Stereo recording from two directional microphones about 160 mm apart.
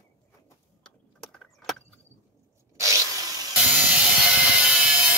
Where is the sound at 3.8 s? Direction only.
5° right (ahead or behind).